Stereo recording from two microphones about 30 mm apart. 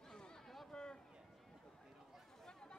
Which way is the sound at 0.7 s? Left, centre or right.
Left.